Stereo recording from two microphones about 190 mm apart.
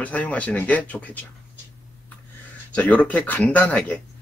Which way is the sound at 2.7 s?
5° left (ahead or behind).